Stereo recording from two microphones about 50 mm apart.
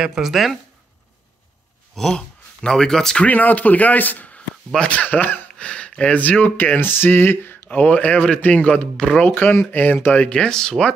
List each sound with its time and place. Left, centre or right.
0.2 s speech: centre
2.0 s speech: centre
3.3 s a man's voice: left
5.6 s speech: left
6.9 s a sound: left
7.9 s speech: left
8.9 s speech: centre
9.3 s a sound: left
10.1 s speech: left